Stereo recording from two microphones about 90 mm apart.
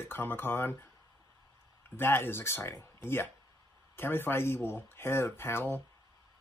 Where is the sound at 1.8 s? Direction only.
25° left (ahead or behind).